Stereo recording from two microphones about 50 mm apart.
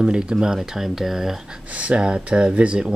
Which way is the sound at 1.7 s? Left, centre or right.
Right.